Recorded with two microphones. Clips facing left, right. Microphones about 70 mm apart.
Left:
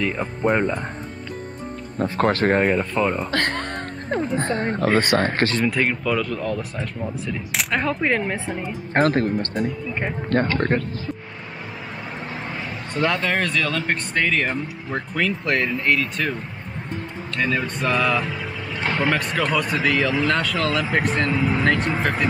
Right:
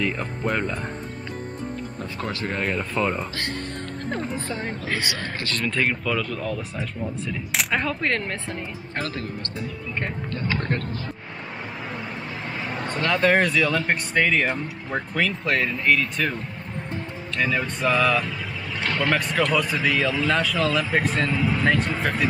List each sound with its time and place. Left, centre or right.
0.0 s speech: centre
2.0 s speech: left
2.6 s speech: centre
3.3 s speech: left
4.1 s speech: centre
4.4 s speech: left
5.6 s speech: centre
8.9 s speech: left
10.7 s speech: centre
12.4 s a sound: centre
12.7 s a sound: right
13.2 s speech: centre
17.4 s speech: centre